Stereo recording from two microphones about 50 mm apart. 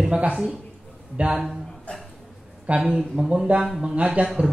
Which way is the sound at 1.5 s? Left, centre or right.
Centre.